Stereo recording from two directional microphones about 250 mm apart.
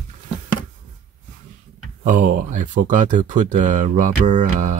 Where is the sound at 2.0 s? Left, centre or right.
Right.